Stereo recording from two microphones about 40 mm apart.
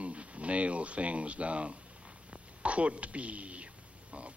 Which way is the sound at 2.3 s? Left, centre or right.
Right.